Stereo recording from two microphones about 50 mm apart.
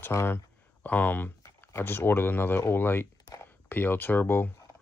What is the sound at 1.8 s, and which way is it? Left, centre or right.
Speech, left.